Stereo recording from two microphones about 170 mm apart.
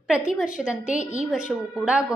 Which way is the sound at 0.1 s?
5° right (ahead or behind).